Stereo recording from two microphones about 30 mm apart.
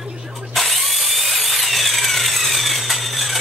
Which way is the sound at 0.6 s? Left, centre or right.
Centre.